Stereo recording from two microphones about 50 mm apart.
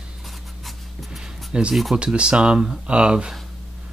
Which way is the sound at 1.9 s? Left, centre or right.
Centre.